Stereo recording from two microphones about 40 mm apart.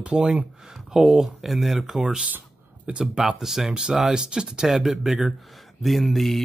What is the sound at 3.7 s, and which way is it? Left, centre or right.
Speech, centre.